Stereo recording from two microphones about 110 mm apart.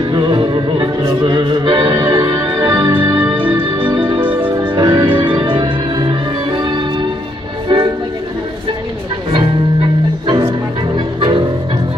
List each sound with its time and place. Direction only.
0.1 s music: 45° right (ahead or behind)
3.3 s music: 15° right (ahead or behind)
3.9 s music: 40° right (ahead or behind)
11.0 s music: 45° right (ahead or behind)